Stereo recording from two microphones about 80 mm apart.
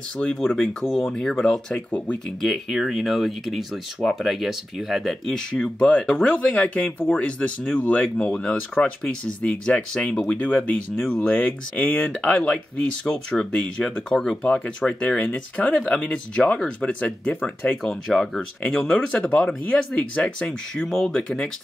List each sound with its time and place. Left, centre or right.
0.2 s speech: centre